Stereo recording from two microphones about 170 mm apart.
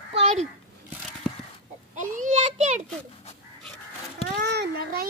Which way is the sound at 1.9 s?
50° right (ahead or behind).